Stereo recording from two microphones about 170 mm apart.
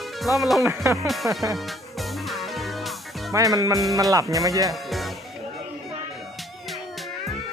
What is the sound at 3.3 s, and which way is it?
Music, 20° right (ahead or behind).